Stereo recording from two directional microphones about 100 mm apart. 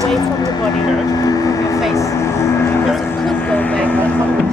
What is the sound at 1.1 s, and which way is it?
Vehicle, 35° left (ahead or behind).